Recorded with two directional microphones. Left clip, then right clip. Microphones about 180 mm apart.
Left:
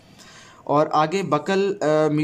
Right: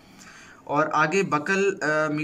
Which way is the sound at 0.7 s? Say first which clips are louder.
Left 3 dB; 30° left (ahead or behind).